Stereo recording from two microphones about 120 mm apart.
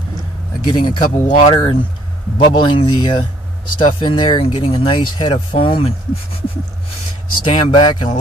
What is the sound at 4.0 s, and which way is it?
Speech, 45° left (ahead or behind).